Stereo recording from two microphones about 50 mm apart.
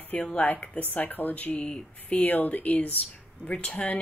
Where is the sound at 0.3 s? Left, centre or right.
Left.